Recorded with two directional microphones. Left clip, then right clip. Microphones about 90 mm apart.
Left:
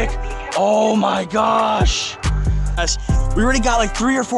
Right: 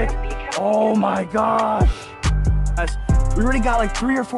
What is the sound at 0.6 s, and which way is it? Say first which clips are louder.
Mantra: left 3 dB; 15° left (ahead or behind).